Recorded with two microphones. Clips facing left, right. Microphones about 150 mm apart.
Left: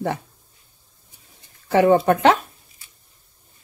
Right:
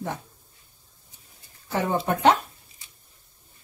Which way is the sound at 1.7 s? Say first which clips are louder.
Left 10 dB; 75° left (ahead or behind).